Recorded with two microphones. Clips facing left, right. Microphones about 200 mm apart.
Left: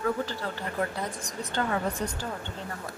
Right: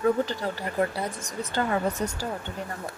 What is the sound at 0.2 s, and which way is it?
Speech, 15° right (ahead or behind).